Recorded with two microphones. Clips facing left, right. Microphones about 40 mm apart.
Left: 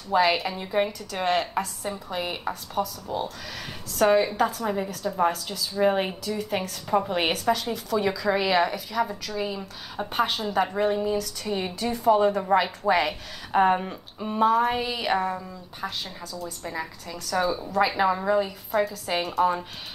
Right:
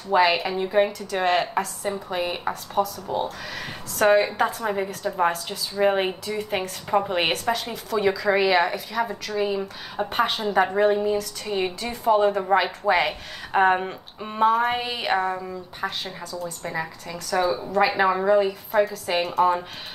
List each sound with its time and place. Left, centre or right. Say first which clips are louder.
0.1 s a woman's voice: right 2 dB; centre
18.7 s a woman's voice: right 3 dB; right